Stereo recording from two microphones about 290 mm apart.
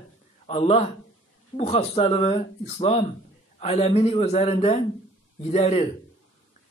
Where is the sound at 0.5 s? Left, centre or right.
Left.